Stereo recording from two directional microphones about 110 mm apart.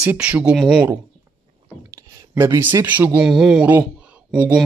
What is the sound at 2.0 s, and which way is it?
Speech, 25° right (ahead or behind).